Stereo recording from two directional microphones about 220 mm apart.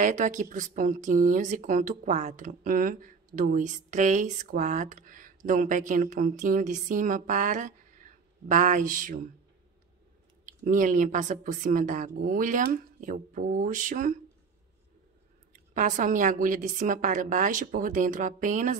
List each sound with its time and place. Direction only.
0.0 s speech: 35° right (ahead or behind)
10.4 s speech: 35° right (ahead or behind)
15.5 s speech: 35° right (ahead or behind)